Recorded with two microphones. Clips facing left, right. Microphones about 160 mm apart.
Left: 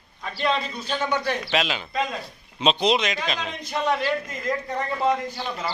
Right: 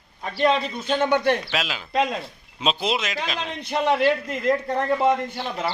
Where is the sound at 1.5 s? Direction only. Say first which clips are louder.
Left 3 dB; centre (ahead or behind).